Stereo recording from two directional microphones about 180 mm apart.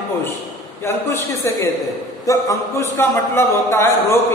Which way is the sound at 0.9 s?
15° left (ahead or behind).